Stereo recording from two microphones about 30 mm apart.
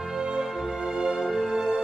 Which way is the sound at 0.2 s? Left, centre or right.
Right.